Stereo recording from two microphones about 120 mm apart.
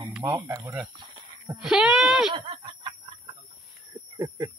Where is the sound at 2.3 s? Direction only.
40° right (ahead or behind).